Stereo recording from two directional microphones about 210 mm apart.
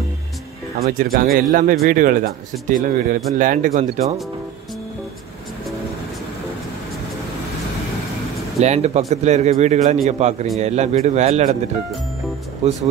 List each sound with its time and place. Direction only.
0.8 s speech: 45° right (ahead or behind)
8.5 s speech: 30° right (ahead or behind)
12.6 s speech: 30° right (ahead or behind)